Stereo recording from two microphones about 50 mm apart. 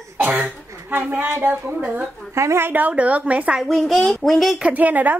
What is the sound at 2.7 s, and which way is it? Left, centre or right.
Speech, right.